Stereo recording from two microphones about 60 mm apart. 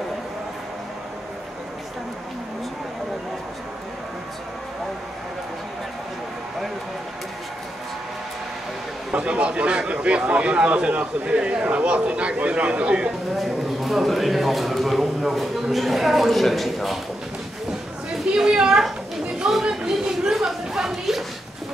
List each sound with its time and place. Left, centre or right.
9.1 s a man's voice: centre
13.4 s a man's voice: centre
18.3 s a woman's voice: centre
19.4 s a sound: centre